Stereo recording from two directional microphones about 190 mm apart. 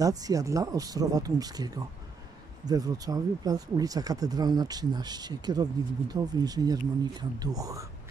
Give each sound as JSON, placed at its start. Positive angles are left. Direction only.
{"t": 0.0, "sound": "speech", "side_deg": -20}